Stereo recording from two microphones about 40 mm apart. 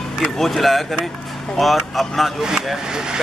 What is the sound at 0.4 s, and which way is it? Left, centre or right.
Speech, centre.